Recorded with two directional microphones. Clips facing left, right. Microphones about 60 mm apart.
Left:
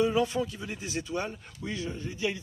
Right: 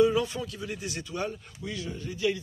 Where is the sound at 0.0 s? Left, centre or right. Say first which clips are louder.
Right 2 dB; left.